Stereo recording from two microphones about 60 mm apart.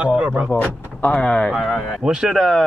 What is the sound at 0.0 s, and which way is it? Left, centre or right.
Speech, right.